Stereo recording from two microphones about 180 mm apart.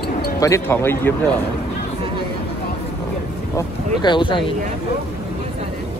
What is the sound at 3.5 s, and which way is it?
Speech, 25° left (ahead or behind).